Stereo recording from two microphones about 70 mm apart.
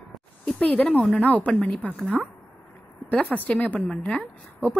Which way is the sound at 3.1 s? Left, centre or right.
Centre.